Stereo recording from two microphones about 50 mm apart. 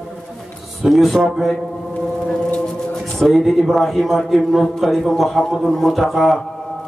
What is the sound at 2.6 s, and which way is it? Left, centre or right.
A man's voice, centre.